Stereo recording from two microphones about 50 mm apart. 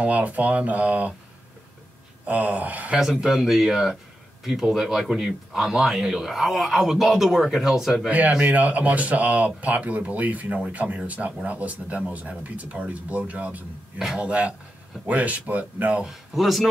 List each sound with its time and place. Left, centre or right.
0.0 s speech: right
2.2 s speech: right
3.0 s a man's voice: centre
8.1 s speech: right
13.9 s speech: centre
14.2 s speech: right
16.0 s a man's voice: centre